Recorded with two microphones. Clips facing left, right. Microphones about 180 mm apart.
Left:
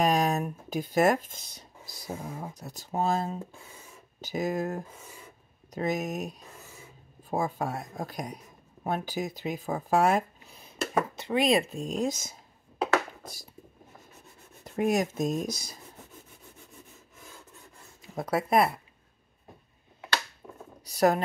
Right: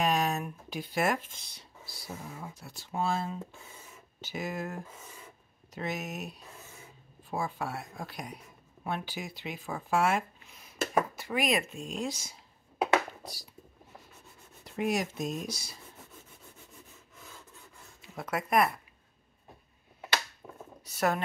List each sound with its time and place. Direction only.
0.0 s speech: 40° left (ahead or behind)
13.2 s a sound: 50° left (ahead or behind)
14.6 s speech: 45° left (ahead or behind)
18.0 s speech: 35° left (ahead or behind)
20.4 s a sound: 5° right (ahead or behind)
20.8 s speech: 35° left (ahead or behind)